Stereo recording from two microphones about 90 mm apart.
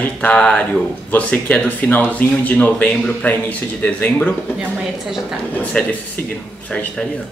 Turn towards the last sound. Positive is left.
turn(degrees=10)  # may be behind; listen again after turning